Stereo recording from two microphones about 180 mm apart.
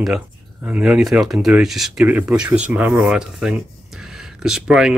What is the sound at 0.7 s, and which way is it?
Speech, centre (ahead or behind).